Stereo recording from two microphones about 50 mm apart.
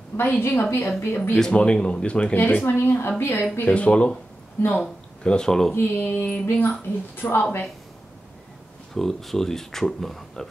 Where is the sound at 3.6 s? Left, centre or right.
Left; by 5.8 s centre.